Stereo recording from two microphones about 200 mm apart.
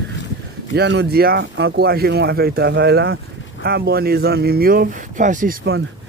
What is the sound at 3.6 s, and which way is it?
Speech, 50° right (ahead or behind).